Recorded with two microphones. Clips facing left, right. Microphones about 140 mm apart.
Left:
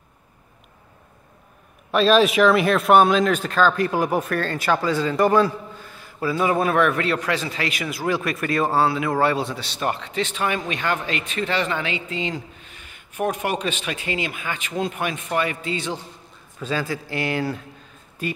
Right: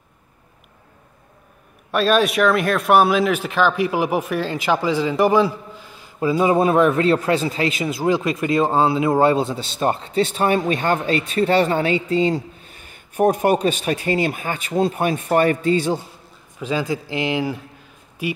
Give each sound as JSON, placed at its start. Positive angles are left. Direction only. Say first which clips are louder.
{"t": 1.9, "sound": "speech", "louder": "left 1 dB", "side_deg": 0}
{"t": 16.5, "sound": "speech", "louder": "right 3 dB", "side_deg": -15}